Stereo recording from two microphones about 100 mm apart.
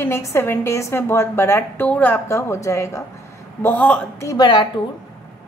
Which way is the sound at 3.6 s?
20° left (ahead or behind).